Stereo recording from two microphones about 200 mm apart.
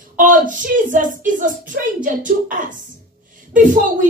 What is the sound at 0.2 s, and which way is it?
Speech, 40° right (ahead or behind).